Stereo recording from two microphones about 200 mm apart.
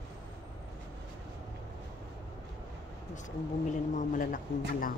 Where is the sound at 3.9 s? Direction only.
40° left (ahead or behind).